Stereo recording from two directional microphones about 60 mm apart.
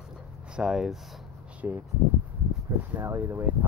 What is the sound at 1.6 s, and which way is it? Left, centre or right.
Speech, right.